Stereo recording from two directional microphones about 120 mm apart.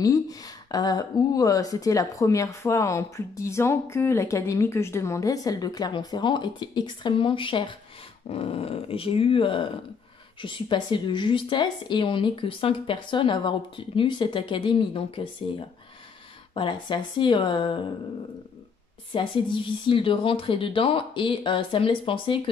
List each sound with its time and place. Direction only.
0.0 s speech: 30° left (ahead or behind)
8.3 s speech: 55° left (ahead or behind)
19.1 s speech: 45° left (ahead or behind)